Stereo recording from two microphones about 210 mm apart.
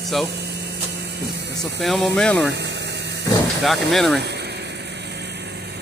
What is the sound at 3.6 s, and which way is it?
Speech, centre (ahead or behind).